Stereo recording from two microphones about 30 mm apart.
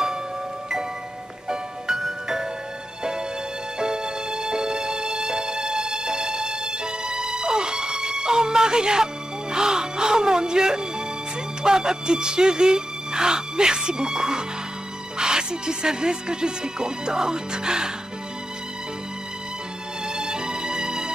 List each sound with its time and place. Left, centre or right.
1.5 s music: centre
3.8 s music: right
11.6 s speech: right
20.1 s music: right